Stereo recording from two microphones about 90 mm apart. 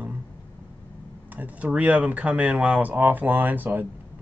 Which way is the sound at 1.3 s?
20° right (ahead or behind).